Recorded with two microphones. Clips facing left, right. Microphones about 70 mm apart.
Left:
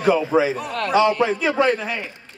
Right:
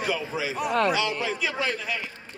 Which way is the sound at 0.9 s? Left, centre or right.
Left.